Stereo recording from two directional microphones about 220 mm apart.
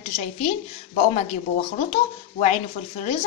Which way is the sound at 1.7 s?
35° left (ahead or behind).